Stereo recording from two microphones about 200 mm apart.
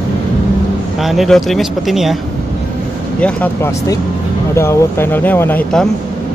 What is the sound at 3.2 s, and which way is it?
Speech, 5° left (ahead or behind).